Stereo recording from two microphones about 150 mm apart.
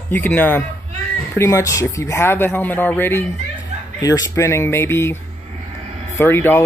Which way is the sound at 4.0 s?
25° left (ahead or behind).